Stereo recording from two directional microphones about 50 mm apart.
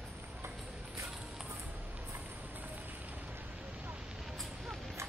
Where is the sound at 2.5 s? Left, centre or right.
Right.